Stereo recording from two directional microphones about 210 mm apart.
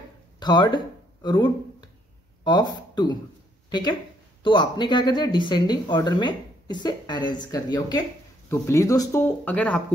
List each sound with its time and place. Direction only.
0.4 s speech: 20° left (ahead or behind)
4.4 s speech: 20° left (ahead or behind); by 9.8 s 5° left (ahead or behind)